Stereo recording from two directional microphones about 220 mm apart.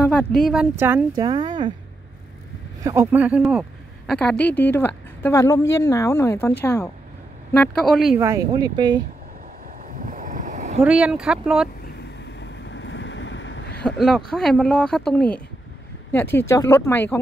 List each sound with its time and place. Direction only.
0.0 s speech: 5° left (ahead or behind); by 1.7 s 20° right (ahead or behind)
2.8 s speech: 15° right (ahead or behind)
4.1 s a woman's voice: 5° left (ahead or behind)
8.2 s speech: 15° right (ahead or behind)
9.8 s boat: 40° right (ahead or behind)
10.8 s speech: 5° right (ahead or behind)
12.0 s vehicle: 50° left (ahead or behind)
13.8 s a woman's voice: centre (ahead or behind)